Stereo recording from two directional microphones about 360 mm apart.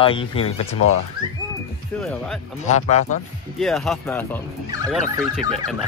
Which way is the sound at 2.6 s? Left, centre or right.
Centre.